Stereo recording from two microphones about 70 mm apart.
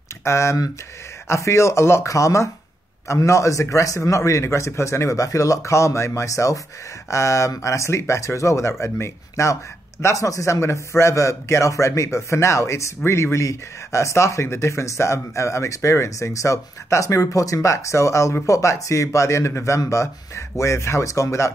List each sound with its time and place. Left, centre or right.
0.2 s a man's voice: left